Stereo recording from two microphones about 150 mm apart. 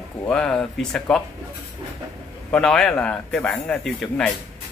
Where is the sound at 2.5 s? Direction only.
5° left (ahead or behind).